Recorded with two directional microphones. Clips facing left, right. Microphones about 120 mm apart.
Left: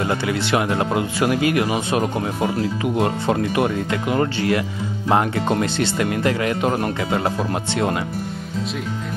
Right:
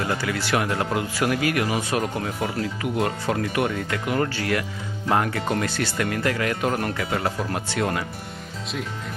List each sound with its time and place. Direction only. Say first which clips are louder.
0.1 s speech: left 4 dB; 20° left (ahead or behind)